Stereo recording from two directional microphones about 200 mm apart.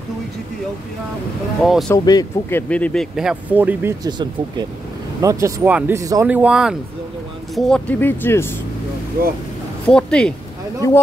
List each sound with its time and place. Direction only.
1.6 s speech: centre (ahead or behind)
2.0 s speech: 20° left (ahead or behind)
2.7 s speech: 5° left (ahead or behind); by 4.1 s 10° right (ahead or behind)
5.2 s speech: 15° right (ahead or behind); by 8.5 s 10° left (ahead or behind)
9.8 s speech: 5° left (ahead or behind)